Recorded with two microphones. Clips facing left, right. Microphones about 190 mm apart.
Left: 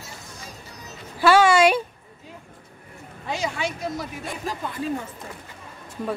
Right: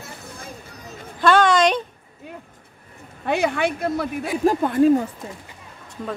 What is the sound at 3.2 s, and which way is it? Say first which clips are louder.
Speech: right 7 dB; 60° right (ahead or behind).